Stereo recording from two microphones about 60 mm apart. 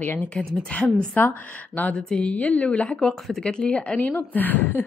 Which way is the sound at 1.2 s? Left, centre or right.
Left.